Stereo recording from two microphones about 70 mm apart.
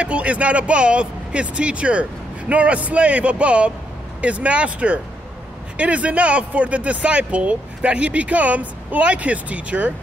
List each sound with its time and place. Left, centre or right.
0.0 s speech: centre